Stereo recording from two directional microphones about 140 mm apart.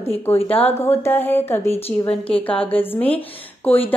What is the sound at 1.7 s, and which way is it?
Speech, 45° left (ahead or behind).